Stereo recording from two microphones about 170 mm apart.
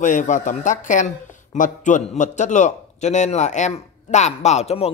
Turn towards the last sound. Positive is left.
turn(degrees=40)  # may be behind; listen again after turning